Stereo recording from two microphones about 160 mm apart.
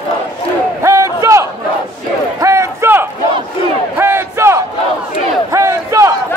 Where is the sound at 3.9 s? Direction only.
15° right (ahead or behind).